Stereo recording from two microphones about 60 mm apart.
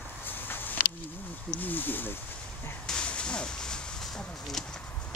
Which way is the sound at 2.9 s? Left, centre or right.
Centre.